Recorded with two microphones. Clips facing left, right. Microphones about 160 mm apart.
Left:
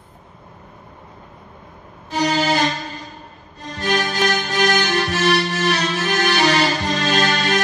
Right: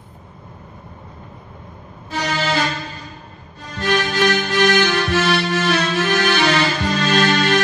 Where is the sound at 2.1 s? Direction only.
40° left (ahead or behind).